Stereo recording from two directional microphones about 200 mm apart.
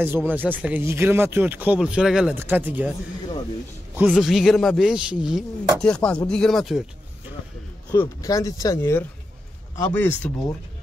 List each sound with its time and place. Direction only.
0.0 s speech: 10° right (ahead or behind)
3.9 s a man's voice: 5° right (ahead or behind)
7.9 s speech: 15° left (ahead or behind)